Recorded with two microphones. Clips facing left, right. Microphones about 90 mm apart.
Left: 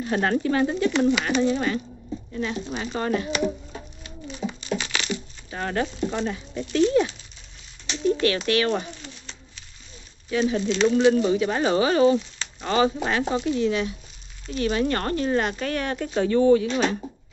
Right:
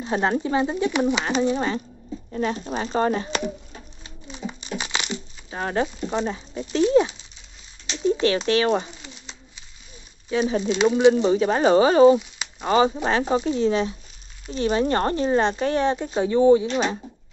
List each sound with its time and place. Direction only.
0.0 s speech: 20° right (ahead or behind)
2.3 s speech: 40° right (ahead or behind)
4.0 s crumpling: 20° right (ahead or behind)
8.2 s speech: 25° right (ahead or behind)
9.2 s bird: 15° right (ahead or behind)
10.6 s speech: 15° right (ahead or behind)
11.2 s speech: 30° right (ahead or behind)
12.2 s a sound: 10° right (ahead or behind)
12.7 s speech: 30° right (ahead or behind)